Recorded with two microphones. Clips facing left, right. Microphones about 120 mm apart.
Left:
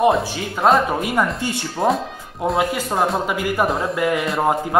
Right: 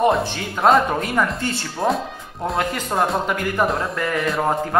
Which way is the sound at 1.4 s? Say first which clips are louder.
Left 1 dB; 15° left (ahead or behind).